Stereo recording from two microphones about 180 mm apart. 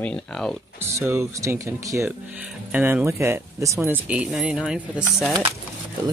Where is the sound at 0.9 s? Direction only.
15° right (ahead or behind).